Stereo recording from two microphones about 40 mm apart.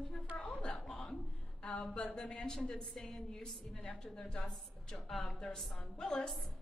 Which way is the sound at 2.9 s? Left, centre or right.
Centre.